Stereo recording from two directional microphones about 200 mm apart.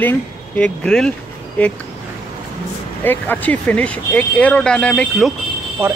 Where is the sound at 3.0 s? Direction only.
10° left (ahead or behind).